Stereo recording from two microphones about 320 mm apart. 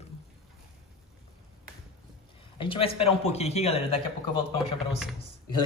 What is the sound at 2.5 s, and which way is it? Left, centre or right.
A man's voice, centre.